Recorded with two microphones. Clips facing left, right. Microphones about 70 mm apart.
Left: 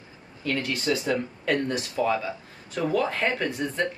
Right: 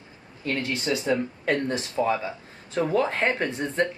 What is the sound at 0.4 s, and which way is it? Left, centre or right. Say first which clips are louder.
Speech: even; right.